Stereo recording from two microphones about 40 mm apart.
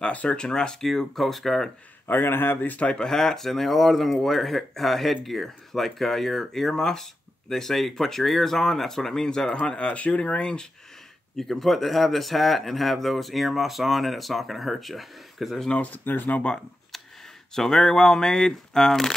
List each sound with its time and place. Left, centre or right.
0.0 s speech: left
0.4 s speech: centre
2.0 s speech: left
2.6 s speech: left
2.9 s speech: centre
9.7 s speech: left
11.3 s speech: centre
15.9 s speech: left
17.6 s speech: centre